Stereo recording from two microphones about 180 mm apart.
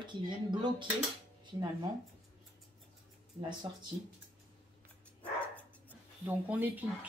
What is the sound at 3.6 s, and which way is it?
Speech, 20° right (ahead or behind).